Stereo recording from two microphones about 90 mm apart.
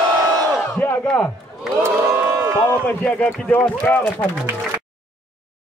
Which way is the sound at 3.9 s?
5° left (ahead or behind).